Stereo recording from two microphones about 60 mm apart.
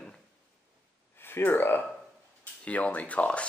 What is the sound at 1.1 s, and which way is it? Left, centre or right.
Speech, left.